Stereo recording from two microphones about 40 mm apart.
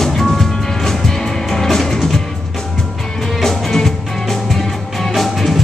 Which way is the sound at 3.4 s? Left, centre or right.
Centre.